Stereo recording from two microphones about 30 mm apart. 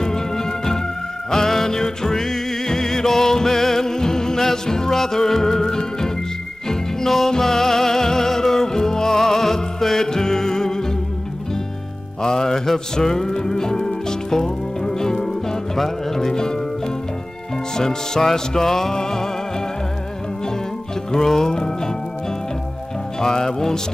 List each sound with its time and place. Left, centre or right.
0.0 s music: centre
12.2 s music: left
21.1 s music: left
23.2 s music: left